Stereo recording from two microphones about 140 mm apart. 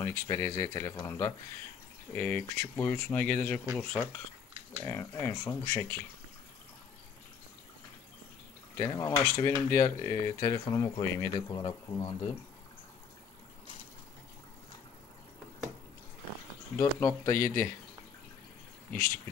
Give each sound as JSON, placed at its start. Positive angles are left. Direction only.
{"t": 0.0, "sound": "speech", "side_deg": 20}
{"t": 8.7, "sound": "speech", "side_deg": 25}
{"t": 16.7, "sound": "speech", "side_deg": 20}